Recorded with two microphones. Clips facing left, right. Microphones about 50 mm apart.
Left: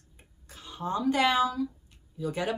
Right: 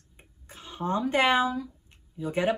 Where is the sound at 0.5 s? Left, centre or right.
Right.